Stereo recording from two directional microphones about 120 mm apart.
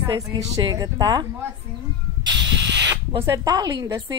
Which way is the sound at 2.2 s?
35° right (ahead or behind).